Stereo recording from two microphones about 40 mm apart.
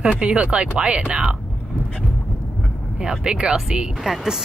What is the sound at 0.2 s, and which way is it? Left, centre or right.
Speech, right.